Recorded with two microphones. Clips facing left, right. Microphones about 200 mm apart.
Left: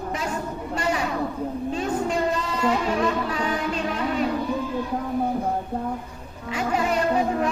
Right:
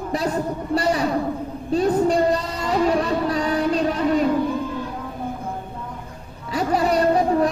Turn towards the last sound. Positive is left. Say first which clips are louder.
# right 4 dB
turn(degrees=-35)  # may be behind; listen again after turning